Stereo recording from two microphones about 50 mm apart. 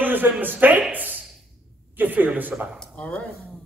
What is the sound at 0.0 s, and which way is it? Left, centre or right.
Speech, right.